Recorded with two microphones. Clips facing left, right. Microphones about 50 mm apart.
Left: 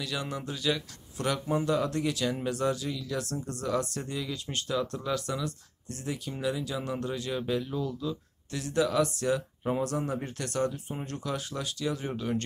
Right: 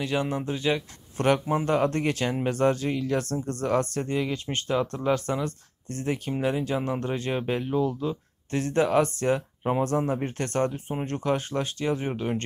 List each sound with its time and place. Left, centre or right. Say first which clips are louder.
0.0 s speech: right 7 dB; right